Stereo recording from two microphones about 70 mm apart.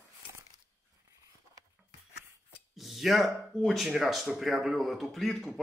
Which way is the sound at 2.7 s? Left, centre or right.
Centre.